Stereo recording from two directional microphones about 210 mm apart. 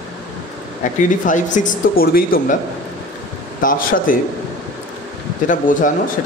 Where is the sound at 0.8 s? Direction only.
40° left (ahead or behind).